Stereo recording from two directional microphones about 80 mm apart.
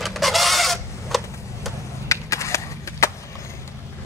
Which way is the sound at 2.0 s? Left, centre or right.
Left.